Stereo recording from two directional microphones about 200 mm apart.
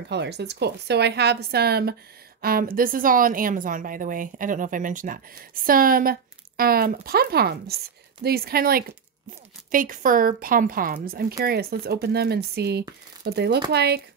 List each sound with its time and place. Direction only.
0.1 s a woman's voice: 55° right (ahead or behind)